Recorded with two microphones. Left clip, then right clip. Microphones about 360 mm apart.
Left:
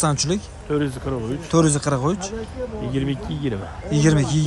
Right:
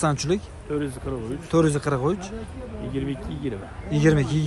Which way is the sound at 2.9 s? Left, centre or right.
Left.